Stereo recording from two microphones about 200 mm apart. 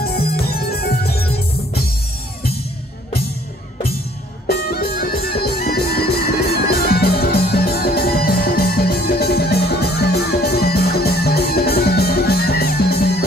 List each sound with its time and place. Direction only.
0.0 s music: 50° left (ahead or behind)
4.5 s music: 50° left (ahead or behind)